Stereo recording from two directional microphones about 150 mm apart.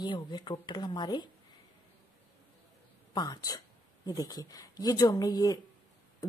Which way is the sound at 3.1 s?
25° left (ahead or behind).